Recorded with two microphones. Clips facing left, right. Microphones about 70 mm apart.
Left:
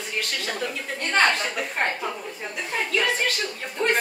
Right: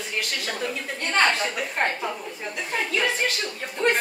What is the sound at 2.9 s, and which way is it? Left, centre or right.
Speech, centre.